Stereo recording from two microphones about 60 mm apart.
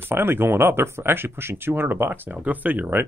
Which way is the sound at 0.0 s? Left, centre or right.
Right.